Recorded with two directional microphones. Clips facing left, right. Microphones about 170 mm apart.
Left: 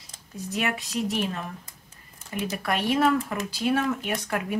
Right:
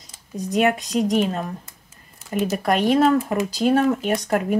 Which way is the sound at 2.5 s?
40° right (ahead or behind).